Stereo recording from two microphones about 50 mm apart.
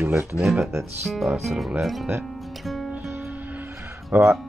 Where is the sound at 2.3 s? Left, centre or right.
Centre.